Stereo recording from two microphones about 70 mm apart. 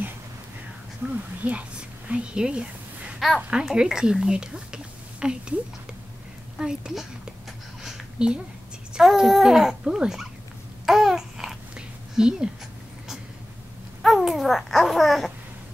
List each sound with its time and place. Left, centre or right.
1.4 s a woman's voice: centre
6.6 s speech: centre
7.8 s a sound: centre
8.9 s speech: centre
10.9 s babbling: centre
12.2 s speech: centre
14.0 s babbling: centre